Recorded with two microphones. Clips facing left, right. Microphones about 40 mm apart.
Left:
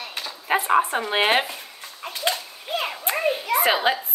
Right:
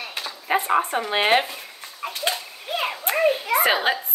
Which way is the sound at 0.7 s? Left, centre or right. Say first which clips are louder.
Left 1 dB; centre.